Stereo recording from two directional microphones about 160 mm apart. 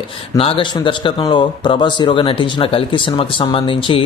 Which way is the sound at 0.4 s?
35° left (ahead or behind).